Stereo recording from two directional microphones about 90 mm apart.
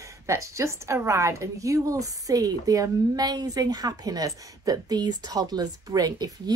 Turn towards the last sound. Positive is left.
turn(degrees=-45)  # may be behind; listen again after turning